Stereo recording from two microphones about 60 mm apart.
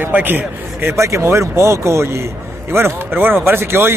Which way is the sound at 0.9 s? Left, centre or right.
Right.